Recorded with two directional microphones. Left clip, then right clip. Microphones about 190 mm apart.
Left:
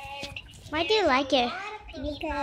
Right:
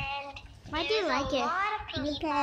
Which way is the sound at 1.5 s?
Centre (ahead or behind).